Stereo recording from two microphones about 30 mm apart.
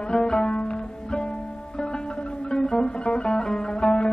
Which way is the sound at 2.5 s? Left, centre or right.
Centre.